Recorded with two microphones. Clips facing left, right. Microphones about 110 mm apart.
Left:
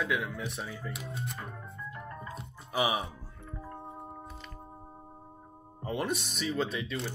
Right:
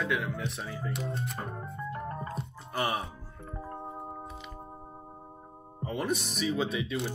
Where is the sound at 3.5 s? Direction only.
30° right (ahead or behind).